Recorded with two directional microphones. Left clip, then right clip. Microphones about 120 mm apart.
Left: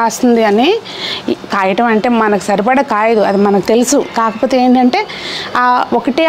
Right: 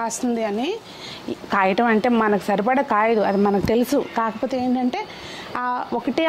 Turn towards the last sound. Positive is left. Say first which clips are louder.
# left 13 dB
turn(degrees=15)  # may be behind; listen again after turning